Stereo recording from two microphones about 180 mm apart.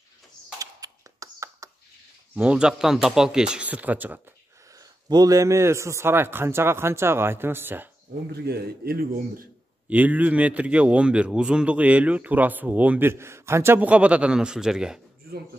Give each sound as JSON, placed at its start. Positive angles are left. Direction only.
{"t": 0.6, "sound": "a sound", "side_deg": -20}
{"t": 2.3, "sound": "speech", "side_deg": -5}
{"t": 4.7, "sound": "a man's voice", "side_deg": -20}
{"t": 8.3, "sound": "speech", "side_deg": -60}
{"t": 9.8, "sound": "a man's voice", "side_deg": -10}